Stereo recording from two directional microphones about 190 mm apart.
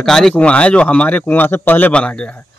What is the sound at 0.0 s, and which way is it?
Speech, centre (ahead or behind).